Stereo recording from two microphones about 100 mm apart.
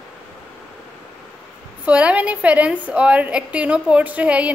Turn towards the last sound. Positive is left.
turn(degrees=-15)  # may be behind; listen again after turning